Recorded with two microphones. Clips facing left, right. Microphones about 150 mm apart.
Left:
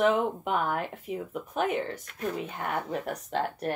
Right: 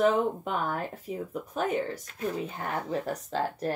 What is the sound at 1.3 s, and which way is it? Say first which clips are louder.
Speech: left 1 dB; 35° right (ahead or behind).